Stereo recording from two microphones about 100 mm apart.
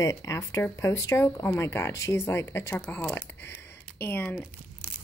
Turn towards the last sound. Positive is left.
turn(degrees=20)  # may be behind; listen again after turning